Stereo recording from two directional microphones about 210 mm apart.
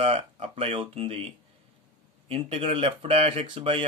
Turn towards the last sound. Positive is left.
turn(degrees=-25)  # may be behind; listen again after turning